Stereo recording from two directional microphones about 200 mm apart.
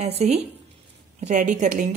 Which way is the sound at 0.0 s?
35° right (ahead or behind).